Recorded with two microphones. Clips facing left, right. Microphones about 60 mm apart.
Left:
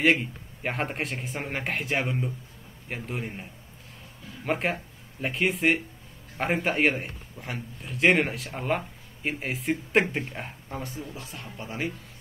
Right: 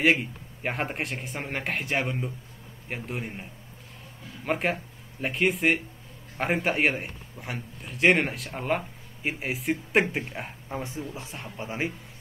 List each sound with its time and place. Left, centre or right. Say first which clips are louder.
0.0 s a man's voice: even; centre
4.5 s a man's voice: even; centre
10.8 s speech: right 2 dB; centre